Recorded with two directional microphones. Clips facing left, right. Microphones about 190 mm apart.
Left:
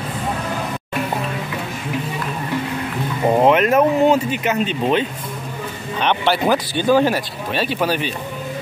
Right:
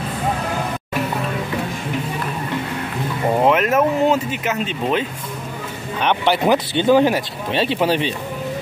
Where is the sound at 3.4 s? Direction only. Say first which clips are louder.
Left 2 dB; centre (ahead or behind).